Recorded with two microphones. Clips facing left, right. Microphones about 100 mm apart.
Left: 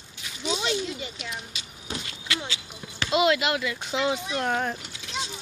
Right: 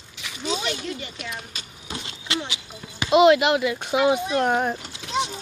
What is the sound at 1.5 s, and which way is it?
Vehicle, 45° right (ahead or behind).